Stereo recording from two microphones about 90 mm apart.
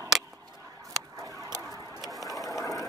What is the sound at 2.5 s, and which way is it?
Vehicle, 40° left (ahead or behind).